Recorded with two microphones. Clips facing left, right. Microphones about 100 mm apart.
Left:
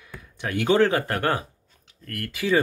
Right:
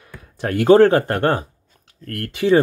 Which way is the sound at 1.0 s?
30° right (ahead or behind).